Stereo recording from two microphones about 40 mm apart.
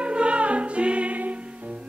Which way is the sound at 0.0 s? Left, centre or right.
Right.